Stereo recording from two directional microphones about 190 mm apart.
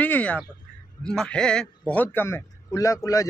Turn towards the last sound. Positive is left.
turn(degrees=15)  # may be behind; listen again after turning